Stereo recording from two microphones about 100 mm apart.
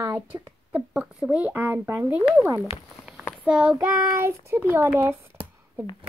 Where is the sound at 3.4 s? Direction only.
10° right (ahead or behind).